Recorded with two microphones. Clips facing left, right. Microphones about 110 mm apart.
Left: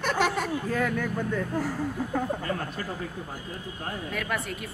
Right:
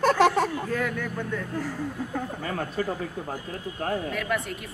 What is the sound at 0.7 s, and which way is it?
Speech, 40° left (ahead or behind).